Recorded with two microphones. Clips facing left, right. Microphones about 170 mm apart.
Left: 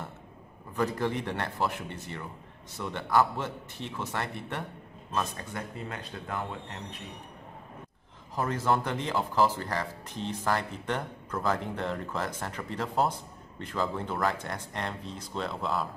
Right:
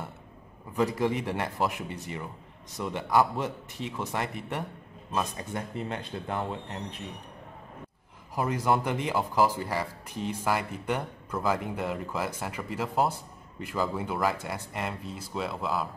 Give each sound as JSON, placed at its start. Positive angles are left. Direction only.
{"t": 0.7, "sound": "speech", "side_deg": -10}
{"t": 8.4, "sound": "speech", "side_deg": -15}